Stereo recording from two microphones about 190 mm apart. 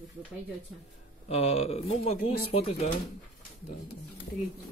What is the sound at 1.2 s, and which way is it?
A man's voice, 35° left (ahead or behind).